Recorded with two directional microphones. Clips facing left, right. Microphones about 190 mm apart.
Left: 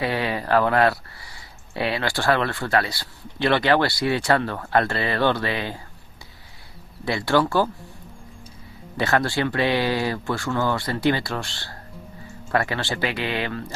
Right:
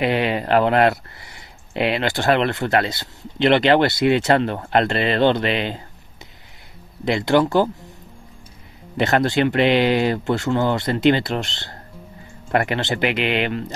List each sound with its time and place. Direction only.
0.0 s speech: 20° right (ahead or behind)
7.1 s speech: 20° right (ahead or behind)
8.9 s speech: 20° right (ahead or behind)